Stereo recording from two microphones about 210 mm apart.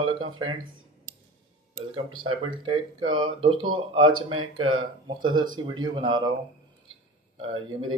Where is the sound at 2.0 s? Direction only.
25° right (ahead or behind).